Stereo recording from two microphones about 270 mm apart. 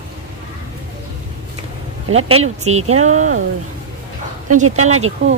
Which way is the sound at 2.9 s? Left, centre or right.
Right.